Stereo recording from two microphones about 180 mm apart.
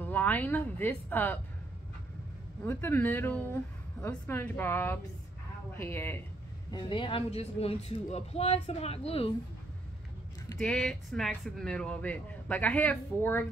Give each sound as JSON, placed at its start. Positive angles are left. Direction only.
{"t": 0.0, "sound": "speech", "side_deg": 10}
{"t": 2.6, "sound": "speech", "side_deg": 15}
{"t": 6.7, "sound": "a man's voice", "side_deg": 25}
{"t": 10.6, "sound": "speech", "side_deg": 5}